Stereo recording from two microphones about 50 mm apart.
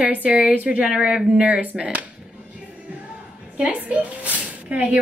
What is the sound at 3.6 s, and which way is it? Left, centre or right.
Speech, right.